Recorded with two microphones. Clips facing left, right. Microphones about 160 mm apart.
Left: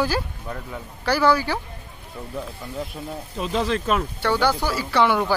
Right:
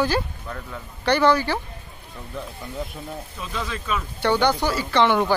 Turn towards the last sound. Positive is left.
turn(degrees=10)  # may be behind; listen again after turning